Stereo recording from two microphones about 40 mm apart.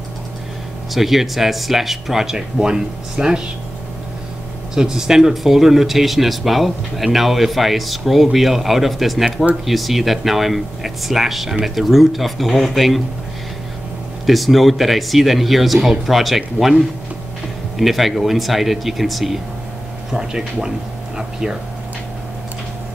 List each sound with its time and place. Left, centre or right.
0.9 s speech: centre
4.7 s speech: centre
14.2 s speech: centre
20.1 s speech: centre
21.2 s a sound: centre